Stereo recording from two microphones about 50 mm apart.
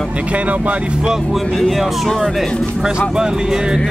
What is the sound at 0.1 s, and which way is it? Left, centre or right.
Speech, right.